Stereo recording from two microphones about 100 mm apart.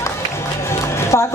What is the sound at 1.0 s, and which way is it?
Music, 25° left (ahead or behind).